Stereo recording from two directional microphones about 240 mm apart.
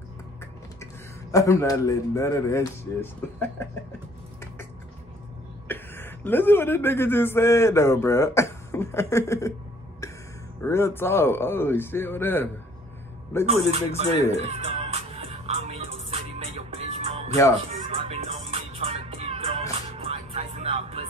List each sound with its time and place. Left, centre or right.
1.3 s speech: centre
5.7 s speech: centre
10.6 s speech: centre
13.5 s speech: right
14.3 s music: right